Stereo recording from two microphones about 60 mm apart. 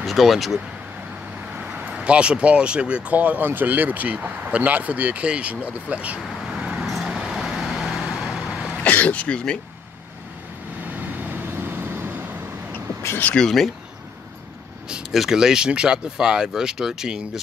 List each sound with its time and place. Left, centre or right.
0.0 s speech: centre
1.9 s speech: centre
6.6 s vehicle: centre
8.8 s speech: left
10.9 s vehicle: right
13.4 s speech: centre
15.0 s speech: centre